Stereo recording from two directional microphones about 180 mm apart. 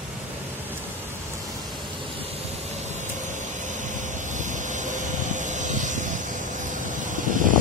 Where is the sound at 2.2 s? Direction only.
40° right (ahead or behind).